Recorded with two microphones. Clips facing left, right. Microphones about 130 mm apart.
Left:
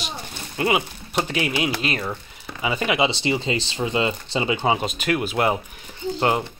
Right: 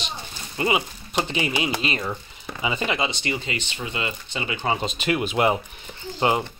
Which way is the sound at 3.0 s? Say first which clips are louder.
Left 5 dB; 25° left (ahead or behind).